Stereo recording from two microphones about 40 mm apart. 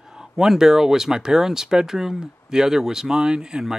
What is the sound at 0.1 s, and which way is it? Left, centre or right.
Speech, centre.